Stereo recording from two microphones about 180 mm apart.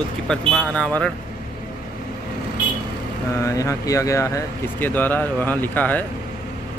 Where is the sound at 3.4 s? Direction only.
15° left (ahead or behind).